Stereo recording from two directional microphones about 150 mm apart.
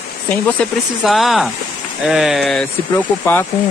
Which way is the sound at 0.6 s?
Centre (ahead or behind).